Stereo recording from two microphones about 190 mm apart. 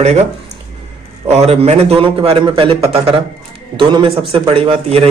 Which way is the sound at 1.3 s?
35° right (ahead or behind).